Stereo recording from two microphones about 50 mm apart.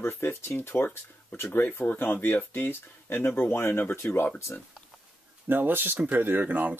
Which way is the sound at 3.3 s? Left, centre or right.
Left.